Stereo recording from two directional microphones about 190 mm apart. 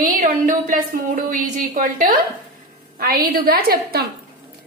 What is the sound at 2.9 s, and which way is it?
A woman's voice, 50° right (ahead or behind).